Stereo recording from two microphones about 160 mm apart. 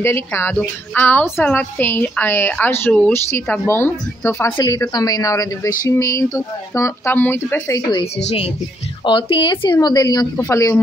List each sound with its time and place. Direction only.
0.0 s a woman's voice: 15° left (ahead or behind)
9.0 s speech: 30° left (ahead or behind)